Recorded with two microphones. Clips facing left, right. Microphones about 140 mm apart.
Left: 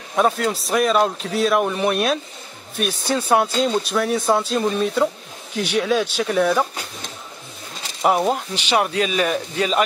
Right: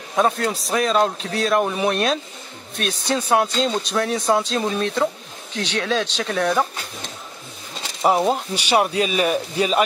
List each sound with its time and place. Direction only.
0.1 s speech: centre (ahead or behind)
8.0 s speech: centre (ahead or behind)
8.5 s speech: 10° right (ahead or behind)